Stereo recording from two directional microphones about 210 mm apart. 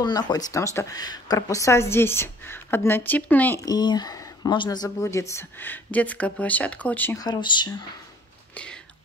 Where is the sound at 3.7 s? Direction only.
20° left (ahead or behind).